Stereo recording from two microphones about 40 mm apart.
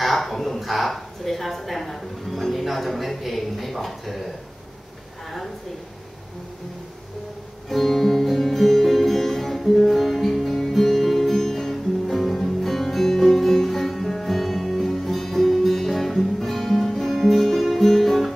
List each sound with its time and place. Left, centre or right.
0.0 s a woman's voice: centre
7.7 s music: centre